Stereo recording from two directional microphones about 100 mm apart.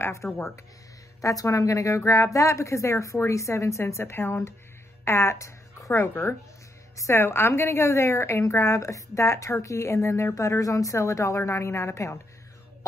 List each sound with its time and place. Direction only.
0.0 s a woman's voice: 30° left (ahead or behind)